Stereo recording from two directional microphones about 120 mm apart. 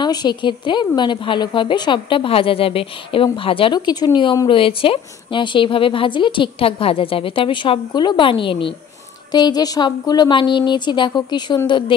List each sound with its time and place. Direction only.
0.0 s a woman's voice: 35° left (ahead or behind)